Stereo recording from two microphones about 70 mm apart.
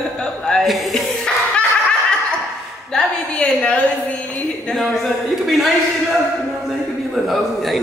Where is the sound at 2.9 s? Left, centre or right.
Centre.